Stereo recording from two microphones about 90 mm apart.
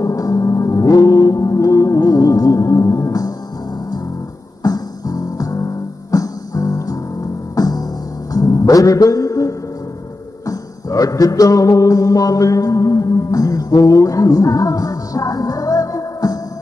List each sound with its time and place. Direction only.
0.0 s music: 40° left (ahead or behind)
4.6 s music: 45° left (ahead or behind)